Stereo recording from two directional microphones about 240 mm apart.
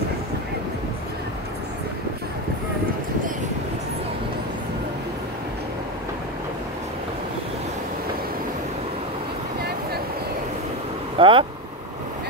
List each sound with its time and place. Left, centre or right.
11.1 s vehicle: right